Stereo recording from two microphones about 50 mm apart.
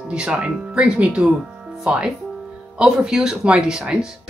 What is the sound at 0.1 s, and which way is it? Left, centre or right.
Speech, right.